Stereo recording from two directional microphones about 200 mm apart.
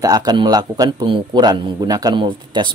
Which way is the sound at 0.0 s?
20° right (ahead or behind).